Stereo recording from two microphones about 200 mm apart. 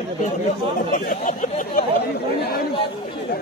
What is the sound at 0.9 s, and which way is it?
Speech, 40° left (ahead or behind).